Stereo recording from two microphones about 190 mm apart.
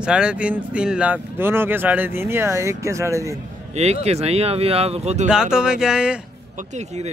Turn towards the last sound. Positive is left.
turn(degrees=-5)  # may be behind; listen again after turning